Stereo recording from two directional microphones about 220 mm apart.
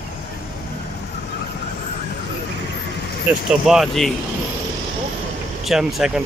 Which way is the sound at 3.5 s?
Centre (ahead or behind).